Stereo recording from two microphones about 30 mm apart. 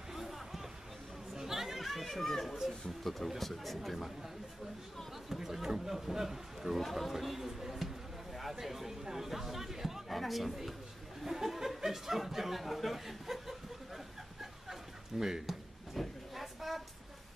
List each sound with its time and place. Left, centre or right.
0.1 s music: centre
1.3 s chatter: centre
3.0 s speech: centre
5.3 s a man's voice: centre
6.8 s speech: centre
9.0 s chatter: centre
10.0 s speech: centre
11.2 s chuckle: centre
12.2 s a sound: centre
15.1 s speech: centre
16.0 s a sound: centre